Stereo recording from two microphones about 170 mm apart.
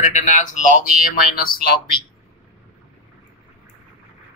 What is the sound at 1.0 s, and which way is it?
Speech, 60° left (ahead or behind).